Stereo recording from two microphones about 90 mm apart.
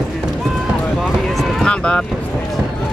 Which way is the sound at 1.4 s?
5° left (ahead or behind).